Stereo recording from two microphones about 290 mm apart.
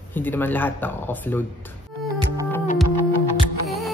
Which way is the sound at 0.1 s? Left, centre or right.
Centre.